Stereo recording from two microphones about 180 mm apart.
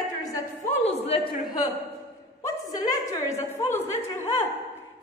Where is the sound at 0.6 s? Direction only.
35° left (ahead or behind).